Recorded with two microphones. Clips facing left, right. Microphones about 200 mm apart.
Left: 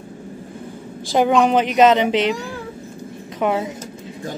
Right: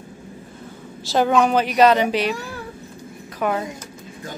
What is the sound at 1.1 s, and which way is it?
Speech, 15° left (ahead or behind).